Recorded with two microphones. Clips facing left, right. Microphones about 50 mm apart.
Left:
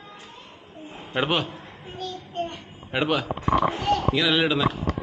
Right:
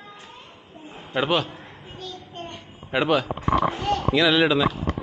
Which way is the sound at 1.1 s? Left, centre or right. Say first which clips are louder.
Right 2 dB; centre.